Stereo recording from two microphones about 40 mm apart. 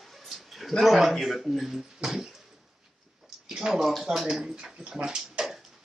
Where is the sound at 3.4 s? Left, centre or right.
Centre.